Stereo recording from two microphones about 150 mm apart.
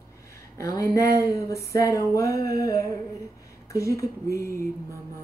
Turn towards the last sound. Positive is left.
turn(degrees=20)  # may be behind; listen again after turning